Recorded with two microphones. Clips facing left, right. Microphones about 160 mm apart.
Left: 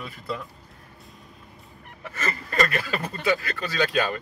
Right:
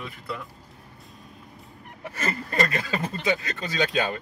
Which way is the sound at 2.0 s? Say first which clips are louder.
Right 1 dB; 25° right (ahead or behind).